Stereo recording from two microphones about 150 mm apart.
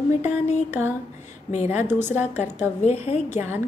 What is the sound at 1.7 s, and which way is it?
Speech, 15° right (ahead or behind).